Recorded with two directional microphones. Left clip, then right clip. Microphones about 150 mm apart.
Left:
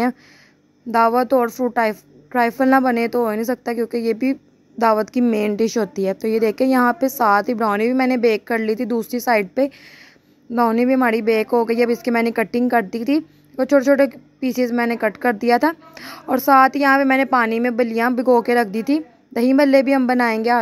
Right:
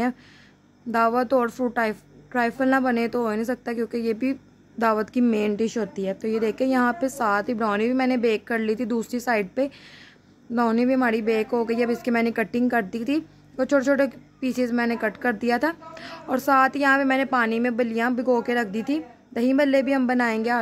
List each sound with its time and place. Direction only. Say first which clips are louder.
0.9 s a woman's voice: left 5 dB; 20° left (ahead or behind)